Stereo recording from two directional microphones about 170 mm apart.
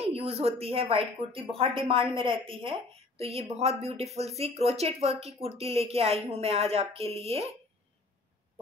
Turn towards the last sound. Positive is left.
turn(degrees=-35)  # may be behind; listen again after turning